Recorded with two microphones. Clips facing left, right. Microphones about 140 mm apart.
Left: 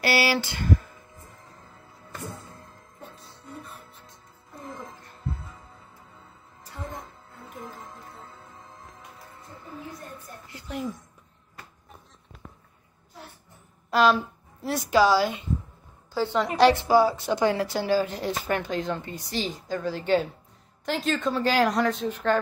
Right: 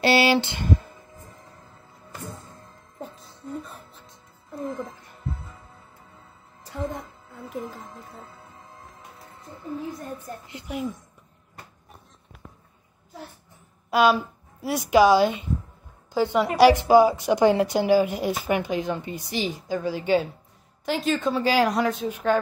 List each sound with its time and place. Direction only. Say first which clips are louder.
0.0 s a sound: right 5 dB; 25° right (ahead or behind)
10.7 s a woman's voice: right 2 dB; 10° right (ahead or behind)
13.8 s a woman's voice: right 1 dB; 5° right (ahead or behind)